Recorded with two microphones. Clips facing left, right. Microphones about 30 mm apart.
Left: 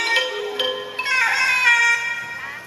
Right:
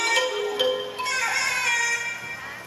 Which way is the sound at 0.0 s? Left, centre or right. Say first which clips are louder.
Left 2 dB; left.